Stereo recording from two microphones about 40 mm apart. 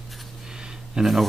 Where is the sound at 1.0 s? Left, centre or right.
Centre.